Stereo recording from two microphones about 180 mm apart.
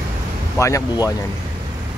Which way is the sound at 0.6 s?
15° left (ahead or behind).